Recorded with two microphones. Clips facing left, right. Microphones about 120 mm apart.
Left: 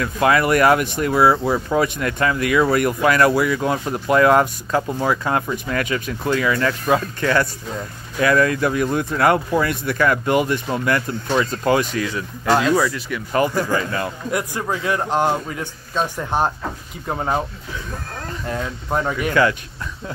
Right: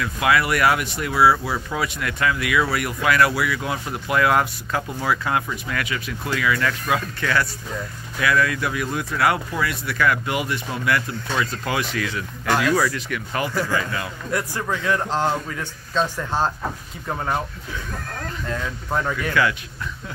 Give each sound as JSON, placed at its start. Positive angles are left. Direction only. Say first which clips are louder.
{"t": 0.0, "sound": "speech", "louder": "left 3 dB", "side_deg": 40}
{"t": 13.7, "sound": "speech", "louder": "left 3 dB", "side_deg": 40}
{"t": 14.3, "sound": "speech", "louder": "even", "side_deg": 15}
{"t": 18.5, "sound": "speech", "louder": "left 3 dB", "side_deg": 20}